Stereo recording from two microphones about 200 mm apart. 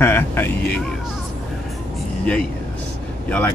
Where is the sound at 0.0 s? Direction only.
10° left (ahead or behind).